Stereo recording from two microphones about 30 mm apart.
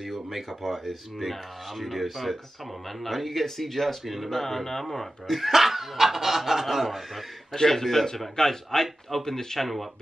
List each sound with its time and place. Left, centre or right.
0.0 s speech: centre
4.0 s speech: centre
4.3 s speech: centre
5.2 s speech: centre
7.6 s speech: centre
9.6 s speech: centre